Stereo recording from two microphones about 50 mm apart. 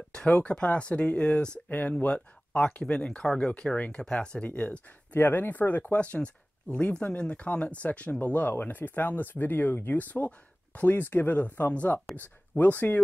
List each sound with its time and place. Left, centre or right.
0.1 s speech: centre
1.7 s speech: left
5.2 s speech: left